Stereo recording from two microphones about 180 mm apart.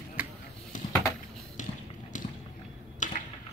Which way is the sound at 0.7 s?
45° left (ahead or behind).